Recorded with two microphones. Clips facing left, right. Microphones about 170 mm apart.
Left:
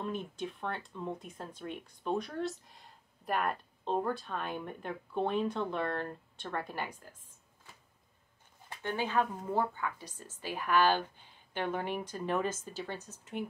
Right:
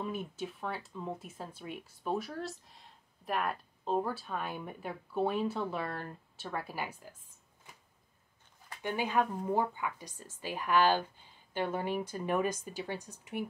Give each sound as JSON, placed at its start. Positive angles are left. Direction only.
{"t": 0.0, "sound": "speech", "side_deg": -5}
{"t": 7.7, "sound": "a sound", "side_deg": -20}
{"t": 8.8, "sound": "speech", "side_deg": -15}